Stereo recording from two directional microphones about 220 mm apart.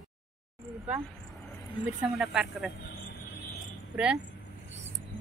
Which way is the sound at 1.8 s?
5° right (ahead or behind).